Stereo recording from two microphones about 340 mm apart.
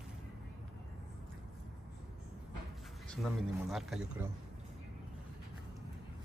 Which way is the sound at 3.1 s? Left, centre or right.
Centre.